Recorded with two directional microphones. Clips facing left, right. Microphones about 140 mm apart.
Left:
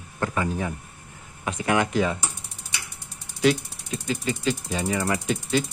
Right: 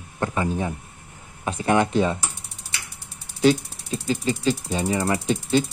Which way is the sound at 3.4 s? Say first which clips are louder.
Right 3 dB; 30° right (ahead or behind).